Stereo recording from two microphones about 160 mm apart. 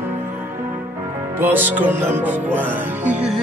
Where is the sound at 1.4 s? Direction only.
10° right (ahead or behind).